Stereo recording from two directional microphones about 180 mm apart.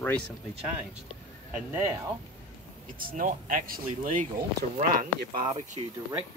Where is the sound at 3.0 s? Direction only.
50° right (ahead or behind).